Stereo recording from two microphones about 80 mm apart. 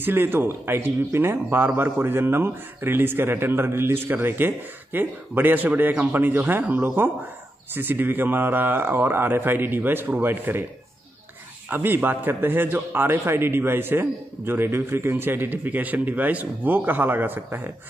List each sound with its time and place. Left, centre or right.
0.0 s a man's voice: right
11.7 s a man's voice: right